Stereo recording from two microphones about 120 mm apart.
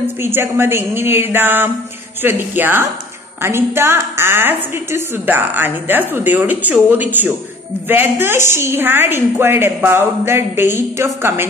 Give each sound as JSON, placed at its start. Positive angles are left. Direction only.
{"t": 0.2, "sound": "a woman's voice", "side_deg": -20}